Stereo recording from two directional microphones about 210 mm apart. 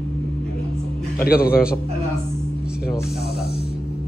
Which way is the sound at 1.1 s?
45° left (ahead or behind).